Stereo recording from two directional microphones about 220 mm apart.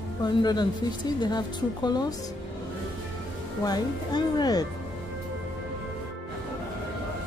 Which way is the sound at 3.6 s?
20° left (ahead or behind).